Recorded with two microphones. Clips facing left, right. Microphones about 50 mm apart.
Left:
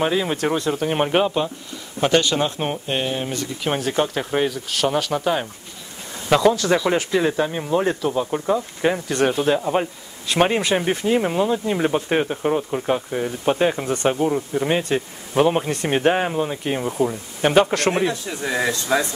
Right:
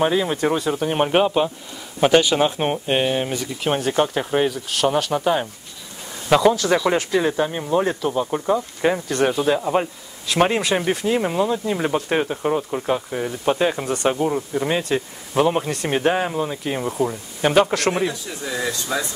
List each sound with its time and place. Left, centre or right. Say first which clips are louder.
0.0 s speech: right 1 dB; centre
16.8 s speech: left 1 dB; centre
17.9 s speech: left 2 dB; left